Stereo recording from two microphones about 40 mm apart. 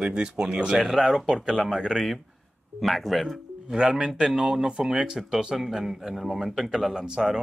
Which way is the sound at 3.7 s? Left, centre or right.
Centre.